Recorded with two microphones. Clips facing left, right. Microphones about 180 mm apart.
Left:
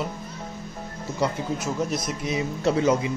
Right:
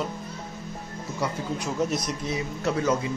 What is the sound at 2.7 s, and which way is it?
Speech, 20° left (ahead or behind).